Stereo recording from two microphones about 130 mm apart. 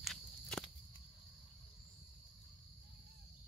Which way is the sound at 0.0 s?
Centre (ahead or behind).